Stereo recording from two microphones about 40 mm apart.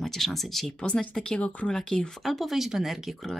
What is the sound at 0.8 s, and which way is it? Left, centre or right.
Speech, left.